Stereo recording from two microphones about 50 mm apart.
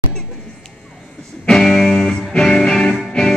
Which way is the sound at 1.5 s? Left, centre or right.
Centre.